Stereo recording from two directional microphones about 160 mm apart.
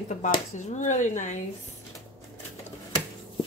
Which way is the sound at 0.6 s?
50° left (ahead or behind).